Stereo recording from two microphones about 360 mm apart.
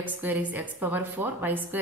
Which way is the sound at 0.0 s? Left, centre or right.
Centre.